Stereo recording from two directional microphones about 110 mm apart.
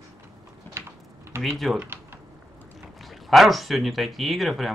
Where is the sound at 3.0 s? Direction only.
Centre (ahead or behind).